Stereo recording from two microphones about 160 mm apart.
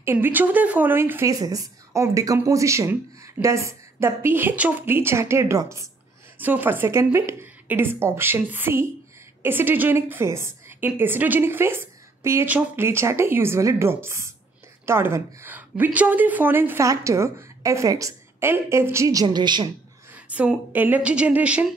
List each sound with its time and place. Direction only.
0.0 s speech: 15° right (ahead or behind)
20.2 s speech: 10° right (ahead or behind)